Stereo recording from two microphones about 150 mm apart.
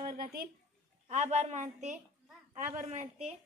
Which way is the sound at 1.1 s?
50° right (ahead or behind).